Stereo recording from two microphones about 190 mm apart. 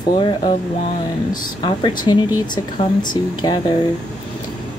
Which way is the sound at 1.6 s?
25° left (ahead or behind).